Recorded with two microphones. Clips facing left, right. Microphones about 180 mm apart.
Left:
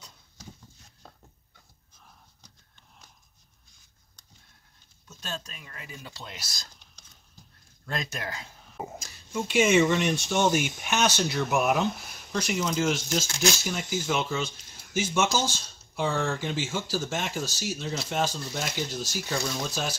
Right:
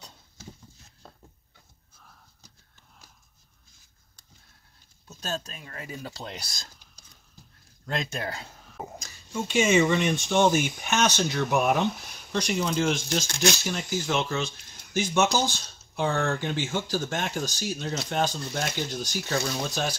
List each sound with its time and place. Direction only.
5.0 s speech: 40° right (ahead or behind)
7.8 s speech: 25° right (ahead or behind)
8.7 s a sound: centre (ahead or behind)
10.2 s speech: centre (ahead or behind)